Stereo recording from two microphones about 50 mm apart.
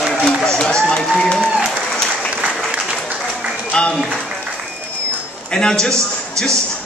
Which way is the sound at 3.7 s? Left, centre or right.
Centre.